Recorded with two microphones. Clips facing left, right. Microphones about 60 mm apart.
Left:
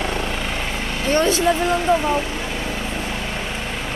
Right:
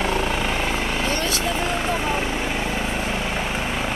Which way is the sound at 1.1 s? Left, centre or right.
Left.